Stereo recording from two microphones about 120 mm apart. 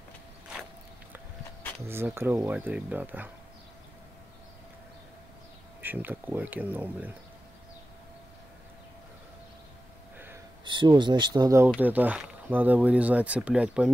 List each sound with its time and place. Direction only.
1.9 s speech: 20° right (ahead or behind)
5.8 s speech: 15° right (ahead or behind)
10.6 s speech: 40° right (ahead or behind)
11.8 s speech: 15° right (ahead or behind)